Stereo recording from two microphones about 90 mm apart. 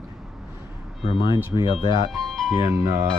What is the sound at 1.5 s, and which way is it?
Speech, 65° left (ahead or behind).